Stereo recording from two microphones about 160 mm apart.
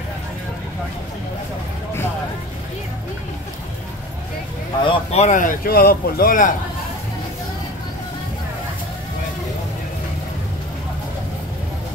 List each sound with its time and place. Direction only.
4.8 s speech: 45° left (ahead or behind); by 6.5 s 60° left (ahead or behind)